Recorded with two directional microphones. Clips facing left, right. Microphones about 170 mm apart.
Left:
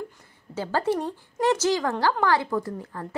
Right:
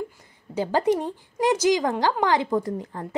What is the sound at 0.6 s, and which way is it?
A woman's voice, 15° right (ahead or behind).